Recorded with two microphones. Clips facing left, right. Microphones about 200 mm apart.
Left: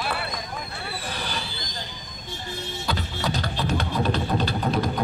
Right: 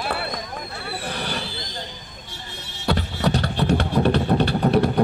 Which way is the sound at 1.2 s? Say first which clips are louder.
Right 3 dB; 65° right (ahead or behind).